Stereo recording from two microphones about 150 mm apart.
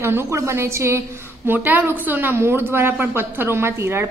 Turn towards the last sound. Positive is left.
turn(degrees=-15)  # may be behind; listen again after turning